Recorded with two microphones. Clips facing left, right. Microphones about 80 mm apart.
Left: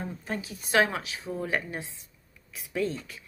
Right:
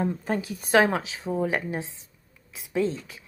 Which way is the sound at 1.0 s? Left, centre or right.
Right.